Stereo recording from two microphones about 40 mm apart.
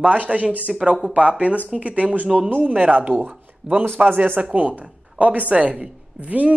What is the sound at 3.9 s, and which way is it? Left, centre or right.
Speech, right.